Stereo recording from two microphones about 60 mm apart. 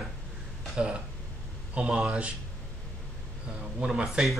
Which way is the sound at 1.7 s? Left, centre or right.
Centre.